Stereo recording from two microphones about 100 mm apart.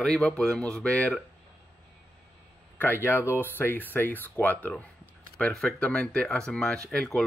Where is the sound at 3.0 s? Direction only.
25° left (ahead or behind).